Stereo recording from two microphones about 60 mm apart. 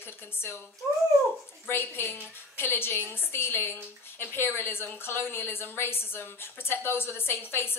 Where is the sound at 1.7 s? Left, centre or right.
Left.